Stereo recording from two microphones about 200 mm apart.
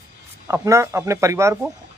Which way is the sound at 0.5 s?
15° right (ahead or behind).